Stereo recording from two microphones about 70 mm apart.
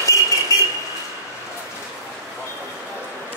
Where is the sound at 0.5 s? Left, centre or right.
Left.